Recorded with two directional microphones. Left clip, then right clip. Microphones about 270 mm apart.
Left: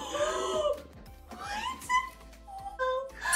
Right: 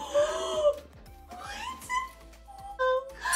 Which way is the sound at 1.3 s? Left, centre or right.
Centre.